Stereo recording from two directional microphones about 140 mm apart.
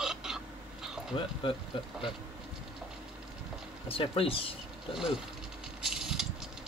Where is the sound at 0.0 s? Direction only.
5° right (ahead or behind).